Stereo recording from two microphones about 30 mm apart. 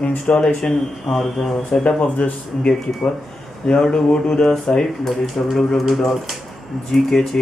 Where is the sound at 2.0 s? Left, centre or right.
Left.